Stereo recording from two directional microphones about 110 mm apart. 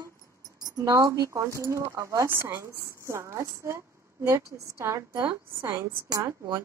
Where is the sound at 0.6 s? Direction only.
30° right (ahead or behind).